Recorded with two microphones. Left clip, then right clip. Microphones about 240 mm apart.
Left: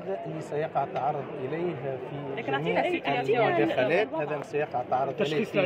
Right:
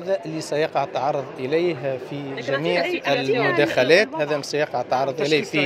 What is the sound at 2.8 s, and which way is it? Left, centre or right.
Speech, centre.